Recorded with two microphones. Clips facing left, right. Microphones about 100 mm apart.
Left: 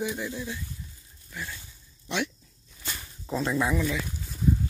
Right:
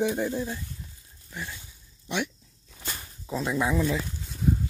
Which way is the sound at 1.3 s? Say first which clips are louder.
Even; 20° right (ahead or behind).